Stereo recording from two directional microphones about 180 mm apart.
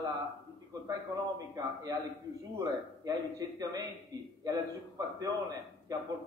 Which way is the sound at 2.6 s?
20° right (ahead or behind).